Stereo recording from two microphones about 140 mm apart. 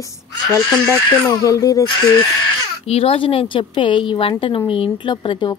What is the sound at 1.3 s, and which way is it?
Speech, 25° left (ahead or behind).